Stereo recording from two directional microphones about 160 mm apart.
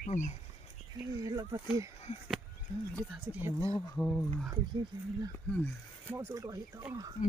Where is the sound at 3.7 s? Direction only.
10° left (ahead or behind).